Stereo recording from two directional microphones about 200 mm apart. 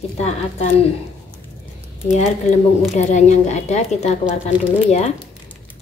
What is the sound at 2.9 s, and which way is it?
Speech, 35° left (ahead or behind).